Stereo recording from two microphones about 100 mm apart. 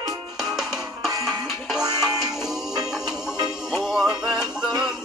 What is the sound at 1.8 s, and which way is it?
Music, 40° right (ahead or behind).